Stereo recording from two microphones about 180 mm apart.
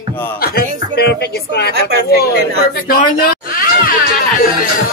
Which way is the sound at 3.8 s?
50° left (ahead or behind).